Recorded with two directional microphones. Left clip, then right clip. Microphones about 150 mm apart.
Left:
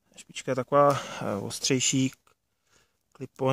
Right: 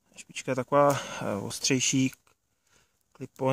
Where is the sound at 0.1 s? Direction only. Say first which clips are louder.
Left 1 dB; 30° left (ahead or behind).